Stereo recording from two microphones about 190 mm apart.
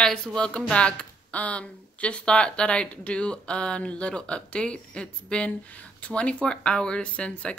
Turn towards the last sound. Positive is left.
turn(degrees=5)  # may be behind; listen again after turning